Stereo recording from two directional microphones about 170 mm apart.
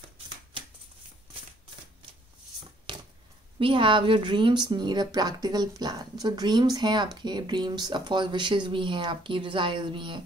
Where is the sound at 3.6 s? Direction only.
30° right (ahead or behind).